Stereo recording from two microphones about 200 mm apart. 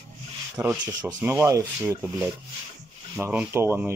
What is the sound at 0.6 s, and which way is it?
Speech, 15° right (ahead or behind).